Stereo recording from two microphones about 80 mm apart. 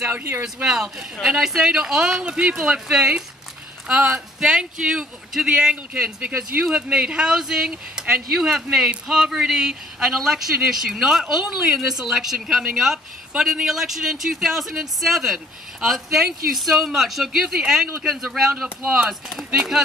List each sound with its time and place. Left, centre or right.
0.1 s speech: right
0.4 s speech: centre